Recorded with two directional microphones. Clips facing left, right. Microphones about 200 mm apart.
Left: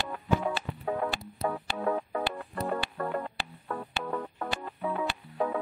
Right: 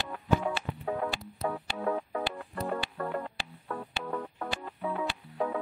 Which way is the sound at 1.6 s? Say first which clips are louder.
Left 1 dB; 55° left (ahead or behind).